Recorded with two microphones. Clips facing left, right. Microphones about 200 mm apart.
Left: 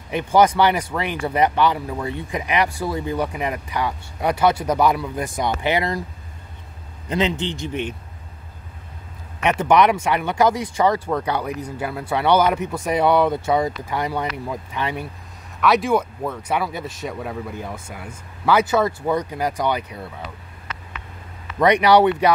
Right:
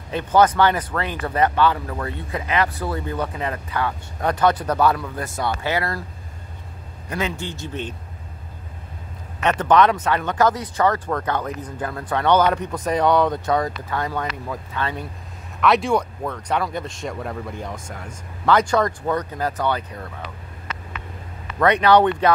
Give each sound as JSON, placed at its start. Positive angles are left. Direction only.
{"t": 0.1, "sound": "speech", "side_deg": 10}
{"t": 7.1, "sound": "speech", "side_deg": 20}
{"t": 9.4, "sound": "speech", "side_deg": 10}
{"t": 15.6, "sound": "speech", "side_deg": 0}
{"t": 21.5, "sound": "speech", "side_deg": 15}